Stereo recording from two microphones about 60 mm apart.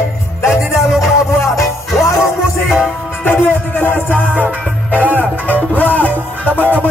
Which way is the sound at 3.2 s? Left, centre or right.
Left.